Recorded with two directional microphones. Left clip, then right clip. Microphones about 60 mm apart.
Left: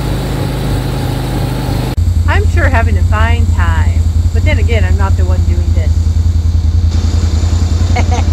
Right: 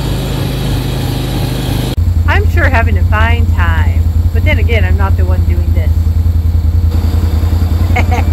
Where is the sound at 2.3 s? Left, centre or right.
Left.